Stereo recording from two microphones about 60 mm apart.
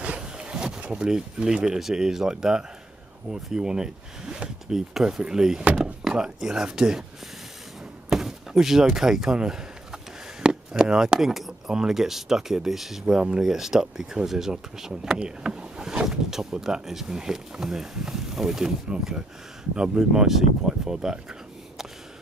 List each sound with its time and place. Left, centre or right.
0.0 s speech: centre
5.6 s speech: right
6.0 s speech: centre
8.1 s speech: centre
13.0 s speech: centre